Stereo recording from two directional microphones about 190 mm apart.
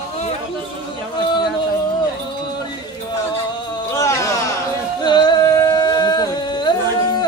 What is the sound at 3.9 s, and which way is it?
Music, 15° left (ahead or behind).